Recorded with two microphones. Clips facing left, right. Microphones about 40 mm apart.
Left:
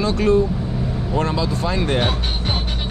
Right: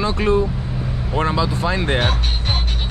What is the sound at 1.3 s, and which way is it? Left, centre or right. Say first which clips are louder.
Speech: right 1 dB; centre.